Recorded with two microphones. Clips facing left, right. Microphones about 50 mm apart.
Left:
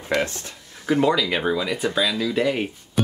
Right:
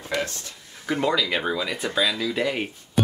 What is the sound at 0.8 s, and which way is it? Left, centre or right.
Speech, centre.